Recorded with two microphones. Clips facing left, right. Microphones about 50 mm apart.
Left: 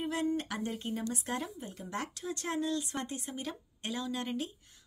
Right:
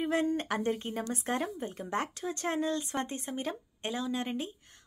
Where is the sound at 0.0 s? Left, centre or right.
Right.